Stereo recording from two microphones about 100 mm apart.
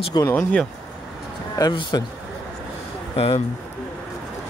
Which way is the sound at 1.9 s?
45° left (ahead or behind).